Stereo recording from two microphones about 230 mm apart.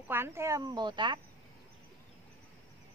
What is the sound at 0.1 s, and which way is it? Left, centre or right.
Speech, centre.